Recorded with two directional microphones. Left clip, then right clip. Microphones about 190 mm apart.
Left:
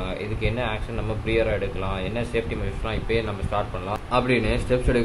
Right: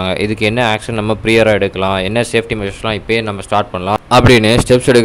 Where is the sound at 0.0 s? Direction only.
65° right (ahead or behind).